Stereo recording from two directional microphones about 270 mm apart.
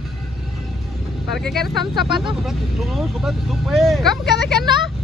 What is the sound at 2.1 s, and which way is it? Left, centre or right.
Speech, centre.